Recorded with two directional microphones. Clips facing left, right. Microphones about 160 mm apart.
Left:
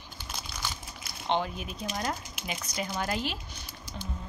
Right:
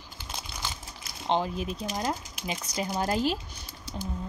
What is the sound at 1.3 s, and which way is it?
Speech, 30° right (ahead or behind).